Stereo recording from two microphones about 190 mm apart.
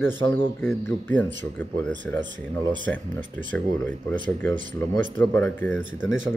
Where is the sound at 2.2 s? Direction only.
25° right (ahead or behind).